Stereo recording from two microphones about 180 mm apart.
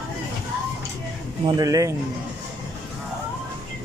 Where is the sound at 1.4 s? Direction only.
20° right (ahead or behind).